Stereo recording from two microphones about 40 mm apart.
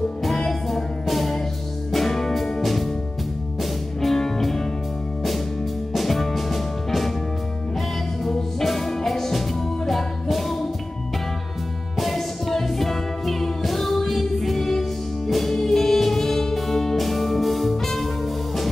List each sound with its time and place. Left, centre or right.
0.5 s music: centre
4.0 s music: centre
5.9 s music: centre
8.2 s music: centre
12.0 s music: centre